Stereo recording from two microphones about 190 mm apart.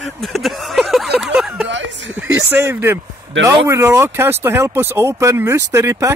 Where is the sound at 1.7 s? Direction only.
70° right (ahead or behind).